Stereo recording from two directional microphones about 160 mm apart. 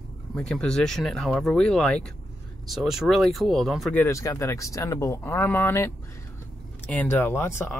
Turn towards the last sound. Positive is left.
turn(degrees=15)  # may be behind; listen again after turning